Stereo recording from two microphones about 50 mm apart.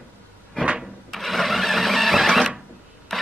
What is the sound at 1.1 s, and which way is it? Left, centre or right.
Printer, centre.